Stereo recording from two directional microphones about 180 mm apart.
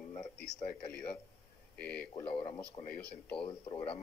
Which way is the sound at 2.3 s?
30° left (ahead or behind).